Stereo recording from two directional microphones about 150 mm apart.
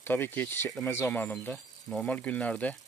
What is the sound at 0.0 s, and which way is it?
Speech, 15° left (ahead or behind).